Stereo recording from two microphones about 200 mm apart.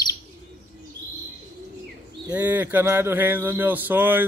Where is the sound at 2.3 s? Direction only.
10° right (ahead or behind).